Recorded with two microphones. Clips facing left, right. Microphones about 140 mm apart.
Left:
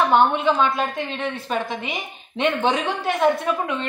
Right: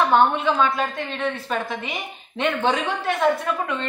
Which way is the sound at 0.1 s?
15° left (ahead or behind).